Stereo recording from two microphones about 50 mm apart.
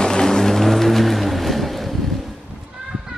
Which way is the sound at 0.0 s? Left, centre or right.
Centre.